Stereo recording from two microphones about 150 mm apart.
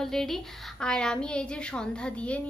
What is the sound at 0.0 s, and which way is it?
A woman's voice, centre (ahead or behind).